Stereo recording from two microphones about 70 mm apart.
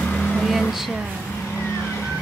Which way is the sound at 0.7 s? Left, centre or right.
Centre.